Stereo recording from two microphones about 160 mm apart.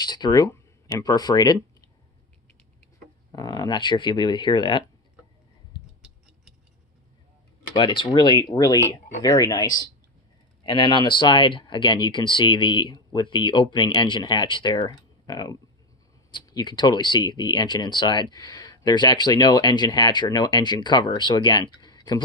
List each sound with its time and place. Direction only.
0.0 s speech: 25° left (ahead or behind)
3.3 s speech: 25° left (ahead or behind)
7.7 s speech: 30° left (ahead or behind)